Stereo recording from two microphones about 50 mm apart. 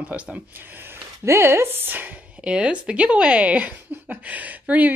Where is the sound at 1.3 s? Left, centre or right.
Right.